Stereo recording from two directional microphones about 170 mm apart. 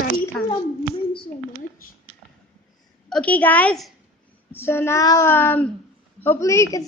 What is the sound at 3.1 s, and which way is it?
A woman's voice, 10° left (ahead or behind).